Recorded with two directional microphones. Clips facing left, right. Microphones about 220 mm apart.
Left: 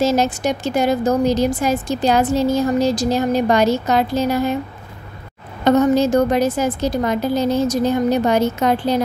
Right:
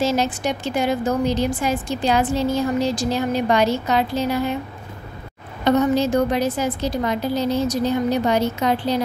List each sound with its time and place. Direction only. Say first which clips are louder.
0.0 s a woman's voice: left 4 dB; 45° left (ahead or behind)
5.6 s a woman's voice: left 3 dB; 45° left (ahead or behind)